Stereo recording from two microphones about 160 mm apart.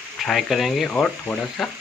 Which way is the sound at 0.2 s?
Centre (ahead or behind).